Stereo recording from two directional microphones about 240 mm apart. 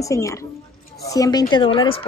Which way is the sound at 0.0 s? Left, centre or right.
Centre.